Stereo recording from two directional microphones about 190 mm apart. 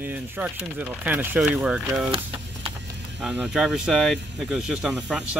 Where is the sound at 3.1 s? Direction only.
5° right (ahead or behind).